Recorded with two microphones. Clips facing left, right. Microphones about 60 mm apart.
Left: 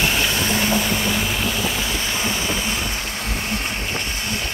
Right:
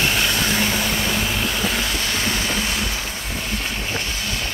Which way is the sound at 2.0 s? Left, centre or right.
Centre.